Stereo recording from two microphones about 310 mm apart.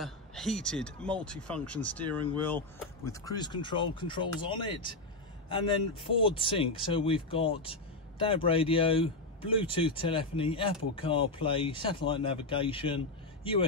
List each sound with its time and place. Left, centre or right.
0.0 s speech: centre